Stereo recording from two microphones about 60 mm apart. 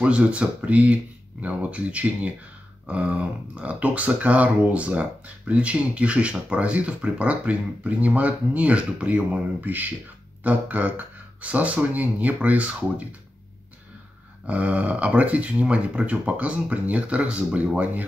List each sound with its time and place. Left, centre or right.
0.0 s speech: right
14.4 s speech: right